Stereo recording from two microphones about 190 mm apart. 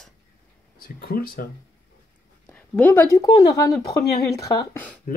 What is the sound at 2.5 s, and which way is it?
Speech, 10° left (ahead or behind).